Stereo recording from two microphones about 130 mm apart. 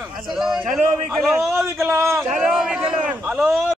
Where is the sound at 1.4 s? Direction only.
20° right (ahead or behind).